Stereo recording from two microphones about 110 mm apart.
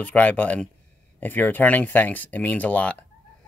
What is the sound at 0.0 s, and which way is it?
Speech, 15° left (ahead or behind).